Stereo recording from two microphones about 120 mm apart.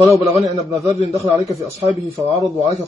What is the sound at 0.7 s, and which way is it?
A man's voice, 25° right (ahead or behind).